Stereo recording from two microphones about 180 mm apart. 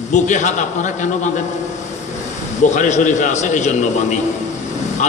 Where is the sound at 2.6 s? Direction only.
40° left (ahead or behind).